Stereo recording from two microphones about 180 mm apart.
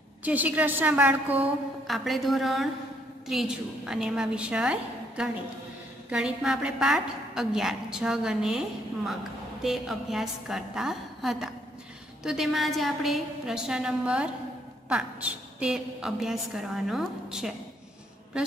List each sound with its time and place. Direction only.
0.2 s a woman's voice: 10° right (ahead or behind)